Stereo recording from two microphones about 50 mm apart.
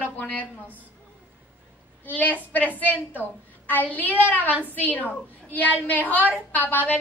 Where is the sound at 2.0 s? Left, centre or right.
Left.